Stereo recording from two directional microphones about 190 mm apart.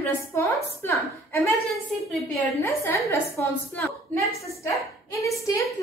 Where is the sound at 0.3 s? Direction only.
15° left (ahead or behind).